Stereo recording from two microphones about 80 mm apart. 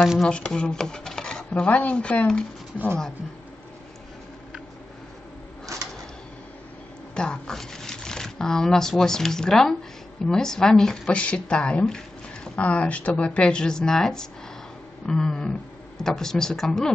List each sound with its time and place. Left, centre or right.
0.0 s speech: centre
0.3 s speech: centre
5.7 s a sound: right
7.2 s speech: centre